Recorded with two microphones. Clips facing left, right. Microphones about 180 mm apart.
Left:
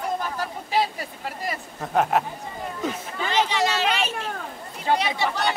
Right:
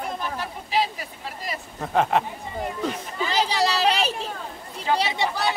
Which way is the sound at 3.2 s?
35° right (ahead or behind).